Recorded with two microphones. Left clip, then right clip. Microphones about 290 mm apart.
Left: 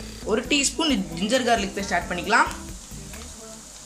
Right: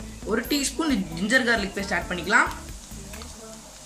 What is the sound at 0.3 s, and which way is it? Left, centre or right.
Speech, centre.